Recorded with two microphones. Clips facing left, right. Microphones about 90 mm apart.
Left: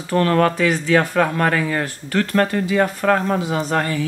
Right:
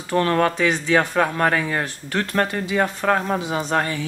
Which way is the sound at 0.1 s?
20° right (ahead or behind).